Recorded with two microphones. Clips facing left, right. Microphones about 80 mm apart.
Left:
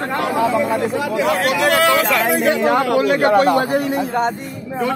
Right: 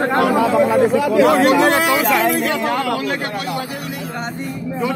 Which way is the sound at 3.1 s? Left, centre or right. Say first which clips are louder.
Left 10 dB; left.